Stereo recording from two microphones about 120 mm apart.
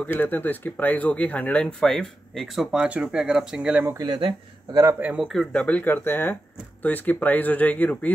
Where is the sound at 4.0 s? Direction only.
40° right (ahead or behind).